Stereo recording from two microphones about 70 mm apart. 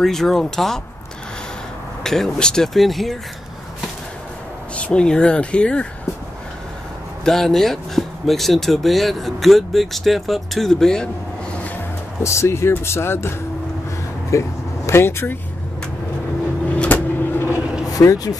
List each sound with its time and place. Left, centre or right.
0.0 s speech: centre
2.0 s speech: centre
4.7 s speech: centre
7.2 s speech: centre
11.5 s music: left
12.2 s speech: left
14.3 s speech: left
14.9 s speech: left
16.7 s vehicle: centre
17.2 s vehicle: left
17.8 s speech: left